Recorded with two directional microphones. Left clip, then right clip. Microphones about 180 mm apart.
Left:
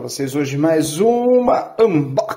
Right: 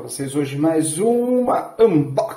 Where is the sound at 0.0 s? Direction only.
35° left (ahead or behind).